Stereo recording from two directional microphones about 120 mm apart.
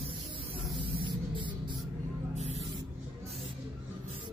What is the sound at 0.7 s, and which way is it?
Spray, 45° right (ahead or behind).